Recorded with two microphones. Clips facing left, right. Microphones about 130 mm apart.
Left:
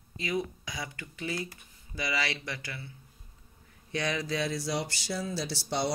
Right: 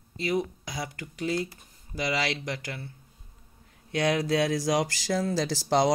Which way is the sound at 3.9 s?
60° right (ahead or behind).